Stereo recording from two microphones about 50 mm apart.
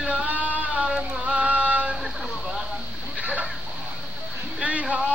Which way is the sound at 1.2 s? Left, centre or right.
Right.